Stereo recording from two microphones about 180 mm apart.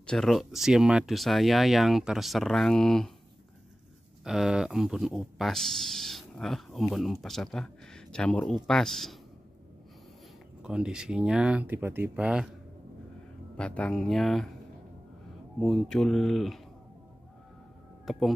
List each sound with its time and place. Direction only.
0.0 s speech: 5° left (ahead or behind)
4.2 s speech: 5° right (ahead or behind)
10.6 s speech: 5° right (ahead or behind)
13.6 s speech: 5° left (ahead or behind)
15.6 s speech: centre (ahead or behind)
18.1 s speech: centre (ahead or behind)